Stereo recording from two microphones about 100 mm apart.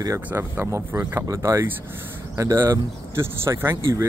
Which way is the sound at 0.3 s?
25° right (ahead or behind).